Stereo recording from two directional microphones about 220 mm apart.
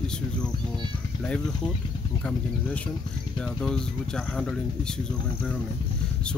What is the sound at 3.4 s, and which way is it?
Speech, 5° left (ahead or behind).